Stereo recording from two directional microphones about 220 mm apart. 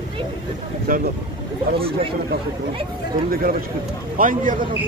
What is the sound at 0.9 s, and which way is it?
Speech, 40° right (ahead or behind).